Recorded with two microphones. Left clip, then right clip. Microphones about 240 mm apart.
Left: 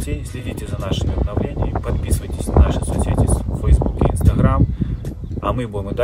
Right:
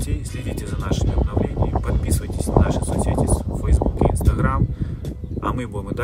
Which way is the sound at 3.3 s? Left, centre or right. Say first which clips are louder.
Left 1 dB; right.